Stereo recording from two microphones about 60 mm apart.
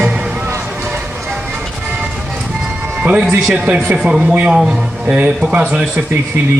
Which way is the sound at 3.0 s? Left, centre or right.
Centre.